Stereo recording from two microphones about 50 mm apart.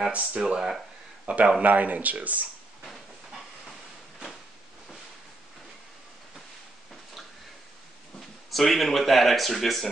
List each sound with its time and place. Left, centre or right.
0.3 s speech: centre
1.2 s speech: right
8.5 s speech: centre